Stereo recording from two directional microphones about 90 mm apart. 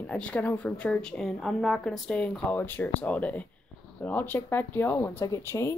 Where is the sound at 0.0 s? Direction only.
15° left (ahead or behind).